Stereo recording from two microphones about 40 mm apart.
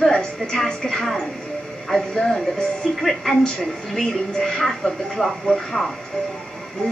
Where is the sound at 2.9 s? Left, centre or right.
Centre.